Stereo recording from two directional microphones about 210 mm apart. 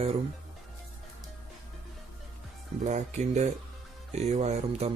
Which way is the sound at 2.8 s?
35° right (ahead or behind).